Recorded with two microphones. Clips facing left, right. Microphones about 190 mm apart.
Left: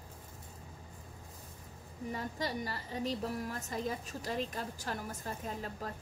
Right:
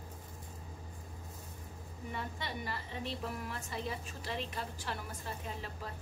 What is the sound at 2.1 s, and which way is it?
A woman's voice, 40° left (ahead or behind).